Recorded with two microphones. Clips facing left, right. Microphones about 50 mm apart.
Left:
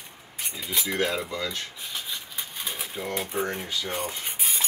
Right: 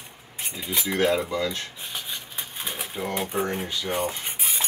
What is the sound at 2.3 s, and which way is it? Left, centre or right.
Pigeon, right.